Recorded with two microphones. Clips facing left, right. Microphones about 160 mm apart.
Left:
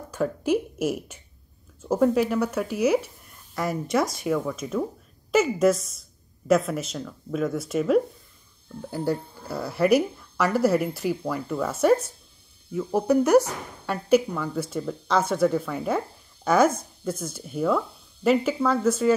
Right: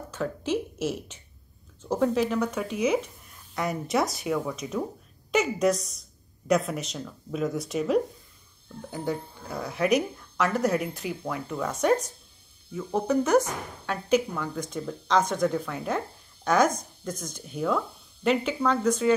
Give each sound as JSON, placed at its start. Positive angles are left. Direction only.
{"t": 0.1, "sound": "a woman's voice", "side_deg": 10}